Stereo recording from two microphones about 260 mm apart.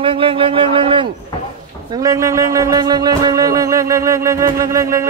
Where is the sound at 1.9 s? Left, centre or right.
Centre.